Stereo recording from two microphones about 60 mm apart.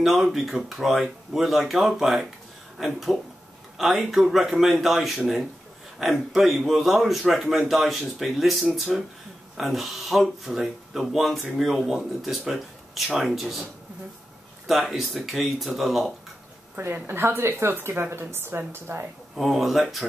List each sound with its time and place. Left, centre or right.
0.0 s speech: centre
14.7 s speech: centre
16.7 s speech: right
19.3 s speech: centre